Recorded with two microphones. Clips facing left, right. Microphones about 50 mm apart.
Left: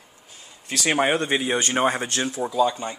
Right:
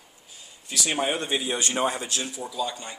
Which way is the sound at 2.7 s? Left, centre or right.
Left.